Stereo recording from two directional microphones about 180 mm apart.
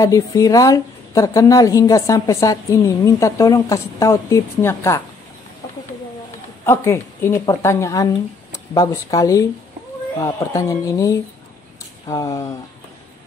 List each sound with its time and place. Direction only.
0.0 s a woman's voice: 20° left (ahead or behind)
6.6 s a woman's voice: 15° left (ahead or behind)